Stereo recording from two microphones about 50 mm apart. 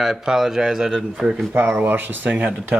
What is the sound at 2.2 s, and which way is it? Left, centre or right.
Speech, right.